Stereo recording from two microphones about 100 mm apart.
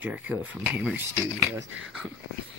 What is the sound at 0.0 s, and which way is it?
Speech, 15° right (ahead or behind).